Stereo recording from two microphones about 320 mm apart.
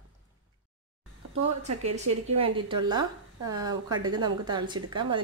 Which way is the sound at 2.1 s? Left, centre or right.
Right.